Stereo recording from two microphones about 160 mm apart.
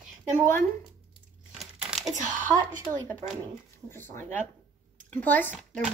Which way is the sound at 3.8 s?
15° left (ahead or behind).